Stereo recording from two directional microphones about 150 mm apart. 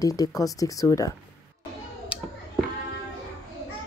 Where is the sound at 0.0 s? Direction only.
25° left (ahead or behind).